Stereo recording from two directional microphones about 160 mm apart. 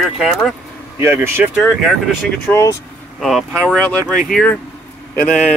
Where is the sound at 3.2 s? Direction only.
Centre (ahead or behind).